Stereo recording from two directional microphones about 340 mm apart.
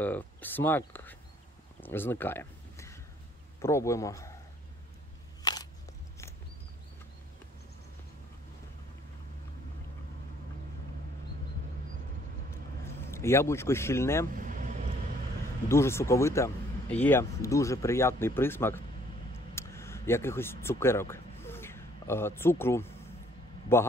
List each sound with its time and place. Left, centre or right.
0.0 s speech: centre
1.8 s a sound: centre
3.6 s speech: centre
5.4 s a sound: centre
12.8 s speech: centre
14.3 s vehicle: right
15.7 s speech: centre
19.5 s a sound: centre
23.7 s speech: centre